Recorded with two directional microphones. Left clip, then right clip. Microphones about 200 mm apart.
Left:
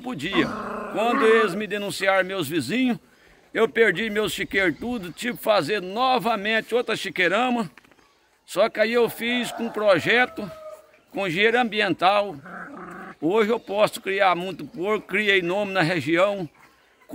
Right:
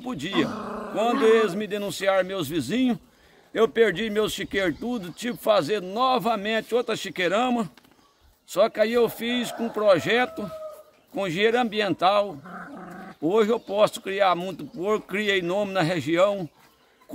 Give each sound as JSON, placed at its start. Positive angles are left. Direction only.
{"t": 0.0, "sound": "speech", "side_deg": -5}
{"t": 12.4, "sound": "dog", "side_deg": -20}
{"t": 13.2, "sound": "speech", "side_deg": -5}